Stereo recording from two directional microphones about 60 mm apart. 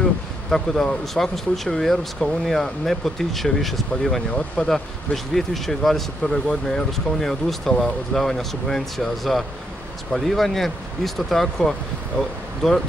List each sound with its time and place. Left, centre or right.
0.5 s speech: centre
4.3 s speech: centre
4.6 s speech: centre